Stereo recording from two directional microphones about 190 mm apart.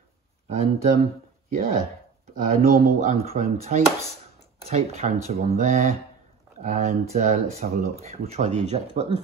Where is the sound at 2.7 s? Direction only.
35° right (ahead or behind).